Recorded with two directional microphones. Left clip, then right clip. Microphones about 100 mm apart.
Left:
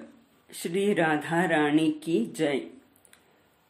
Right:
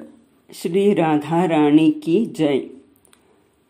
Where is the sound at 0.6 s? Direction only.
45° right (ahead or behind).